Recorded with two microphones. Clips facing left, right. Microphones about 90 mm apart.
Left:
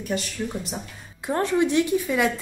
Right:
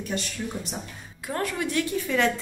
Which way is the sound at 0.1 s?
Centre (ahead or behind).